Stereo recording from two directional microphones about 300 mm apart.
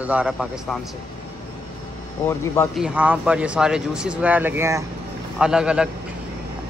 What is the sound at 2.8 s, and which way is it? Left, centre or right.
A man's voice, centre.